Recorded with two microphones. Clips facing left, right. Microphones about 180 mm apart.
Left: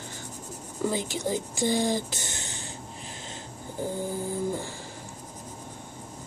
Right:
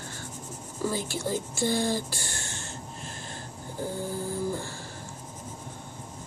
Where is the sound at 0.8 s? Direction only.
15° left (ahead or behind).